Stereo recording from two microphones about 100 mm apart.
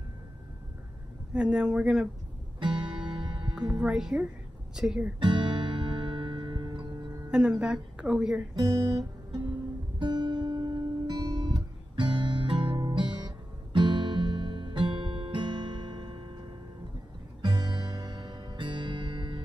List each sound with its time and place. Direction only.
1.3 s a woman's voice: 5° right (ahead or behind)
2.6 s music: 55° right (ahead or behind)
3.5 s a woman's voice: 10° right (ahead or behind)
5.2 s music: 55° right (ahead or behind)
7.2 s a woman's voice: 10° right (ahead or behind)
8.5 s guitar: 40° right (ahead or behind)
13.7 s music: 50° right (ahead or behind)